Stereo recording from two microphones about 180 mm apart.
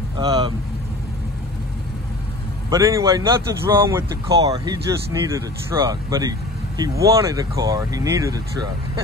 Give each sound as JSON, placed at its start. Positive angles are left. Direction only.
{"t": 0.2, "sound": "speech", "side_deg": -25}
{"t": 2.7, "sound": "speech", "side_deg": -20}